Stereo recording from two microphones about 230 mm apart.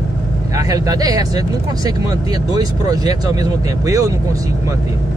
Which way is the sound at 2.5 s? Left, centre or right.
Centre.